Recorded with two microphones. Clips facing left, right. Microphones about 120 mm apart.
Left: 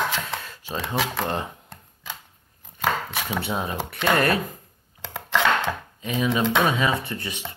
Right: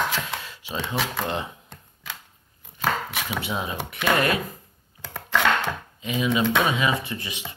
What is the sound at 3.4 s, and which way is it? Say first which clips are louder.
Speech: left 2 dB; 40° left (ahead or behind).